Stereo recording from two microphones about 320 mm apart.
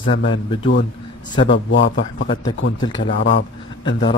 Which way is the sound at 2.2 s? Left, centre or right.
Centre.